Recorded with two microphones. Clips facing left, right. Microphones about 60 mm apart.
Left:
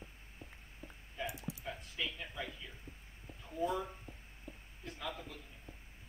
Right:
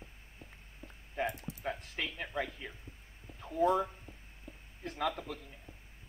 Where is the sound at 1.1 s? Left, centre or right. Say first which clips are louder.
Right 6 dB; right.